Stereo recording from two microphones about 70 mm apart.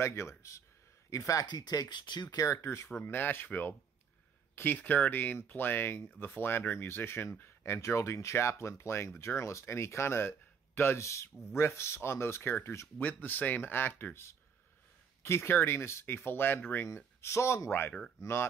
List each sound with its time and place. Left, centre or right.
0.0 s speech: left
1.5 s speech: left
2.3 s speech: left
3.0 s speech: left
17.3 s speech: left